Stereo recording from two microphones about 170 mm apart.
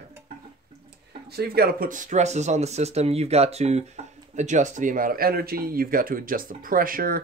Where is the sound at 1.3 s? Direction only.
65° right (ahead or behind).